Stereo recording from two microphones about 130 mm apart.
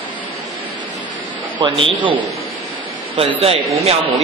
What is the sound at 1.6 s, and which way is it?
Speech, 40° right (ahead or behind).